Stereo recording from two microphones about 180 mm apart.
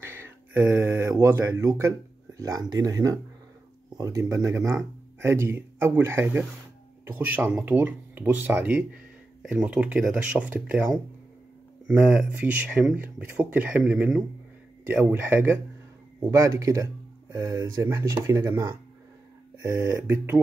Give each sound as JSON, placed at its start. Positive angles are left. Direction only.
{"t": 0.0, "sound": "speech", "side_deg": -10}